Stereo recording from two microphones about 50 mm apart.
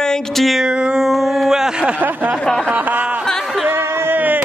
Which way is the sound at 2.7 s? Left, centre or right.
Right.